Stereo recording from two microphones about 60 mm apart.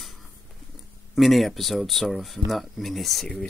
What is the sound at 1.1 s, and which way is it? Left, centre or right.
Speech, centre.